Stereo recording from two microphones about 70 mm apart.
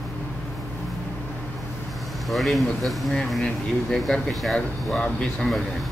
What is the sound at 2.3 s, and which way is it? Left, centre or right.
Speech, centre.